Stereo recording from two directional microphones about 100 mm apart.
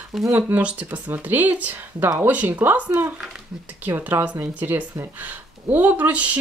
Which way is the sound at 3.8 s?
20° right (ahead or behind).